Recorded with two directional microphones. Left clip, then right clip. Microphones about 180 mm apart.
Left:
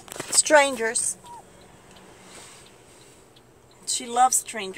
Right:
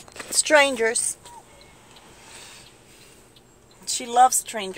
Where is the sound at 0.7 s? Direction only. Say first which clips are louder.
Right 3 dB; 30° right (ahead or behind).